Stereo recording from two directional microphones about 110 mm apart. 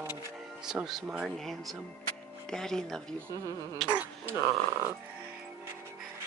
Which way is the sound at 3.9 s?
15° right (ahead or behind).